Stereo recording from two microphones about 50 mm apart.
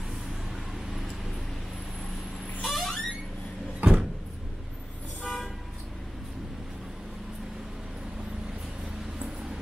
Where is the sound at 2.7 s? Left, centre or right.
Centre.